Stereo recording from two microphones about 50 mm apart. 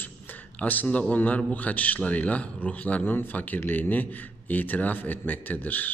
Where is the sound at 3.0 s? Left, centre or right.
Left.